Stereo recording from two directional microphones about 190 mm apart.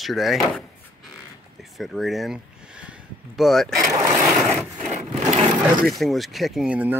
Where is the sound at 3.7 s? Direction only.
15° right (ahead or behind).